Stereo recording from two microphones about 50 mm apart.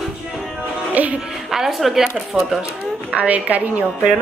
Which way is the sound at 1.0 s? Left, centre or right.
Right.